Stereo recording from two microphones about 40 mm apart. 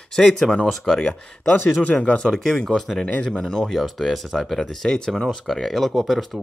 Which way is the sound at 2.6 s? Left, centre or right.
Centre.